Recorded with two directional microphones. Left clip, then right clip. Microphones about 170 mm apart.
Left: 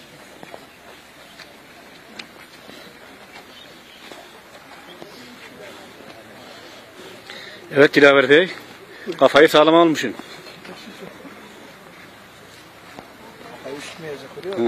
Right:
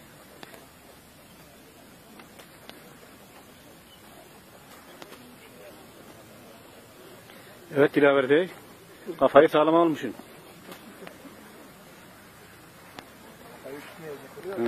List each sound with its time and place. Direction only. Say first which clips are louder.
7.7 s speech: left 8 dB; centre (ahead or behind)